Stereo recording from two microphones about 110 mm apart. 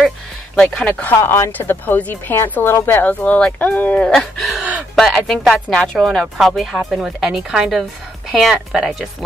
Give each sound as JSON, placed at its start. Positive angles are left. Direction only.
{"t": 0.7, "sound": "speech", "side_deg": 10}
{"t": 1.1, "sound": "speech", "side_deg": 25}